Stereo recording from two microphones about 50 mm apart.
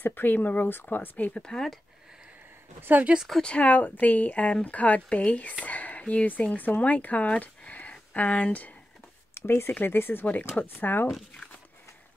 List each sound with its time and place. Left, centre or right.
0.0 s speech: left
1.3 s speech: centre
2.8 s speech: right
3.4 s a woman's voice: left
9.3 s speech: left
10.2 s speech: left